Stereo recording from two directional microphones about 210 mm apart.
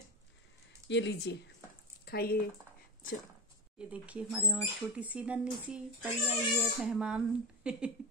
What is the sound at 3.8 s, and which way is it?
A woman's voice, 5° right (ahead or behind).